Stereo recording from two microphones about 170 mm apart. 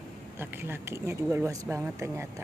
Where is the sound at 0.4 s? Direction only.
15° right (ahead or behind).